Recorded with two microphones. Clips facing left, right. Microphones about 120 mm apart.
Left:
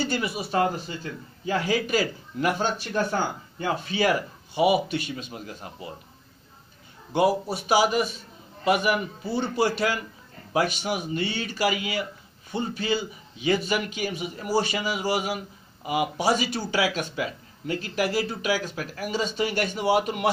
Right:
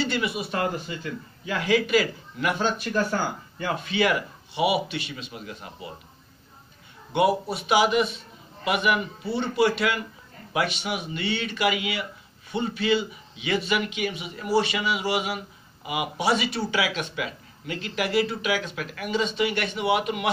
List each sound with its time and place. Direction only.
0.0 s speech: 40° left (ahead or behind)
2.9 s speech: 25° left (ahead or behind); by 5.7 s 40° left (ahead or behind)
7.1 s speech: 40° left (ahead or behind)